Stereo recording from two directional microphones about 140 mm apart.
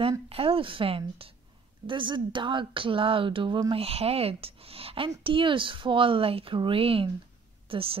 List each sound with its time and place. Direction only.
0.3 s speech: 45° right (ahead or behind)
3.8 s speech: 45° right (ahead or behind)